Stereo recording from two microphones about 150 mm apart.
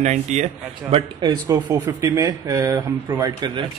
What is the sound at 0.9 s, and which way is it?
Speech, 30° right (ahead or behind).